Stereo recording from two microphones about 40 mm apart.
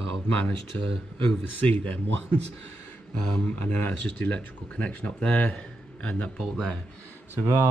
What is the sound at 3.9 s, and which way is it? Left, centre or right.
A man's voice, left.